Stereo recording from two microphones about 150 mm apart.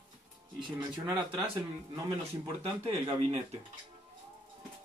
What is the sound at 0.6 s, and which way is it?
Speech, 30° right (ahead or behind).